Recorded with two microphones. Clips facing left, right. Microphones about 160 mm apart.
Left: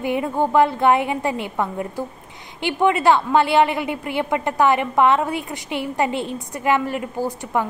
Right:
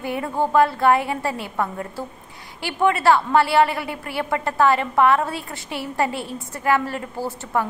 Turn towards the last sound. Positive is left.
turn(degrees=15)  # may be behind; listen again after turning